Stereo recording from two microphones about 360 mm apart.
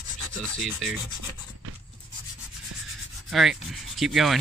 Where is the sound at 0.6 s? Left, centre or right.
Centre.